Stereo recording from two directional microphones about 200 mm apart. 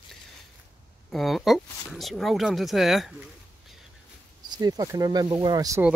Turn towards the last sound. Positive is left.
turn(degrees=-15)  # may be behind; listen again after turning